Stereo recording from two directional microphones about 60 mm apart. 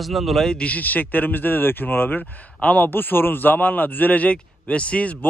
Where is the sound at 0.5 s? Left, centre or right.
Left.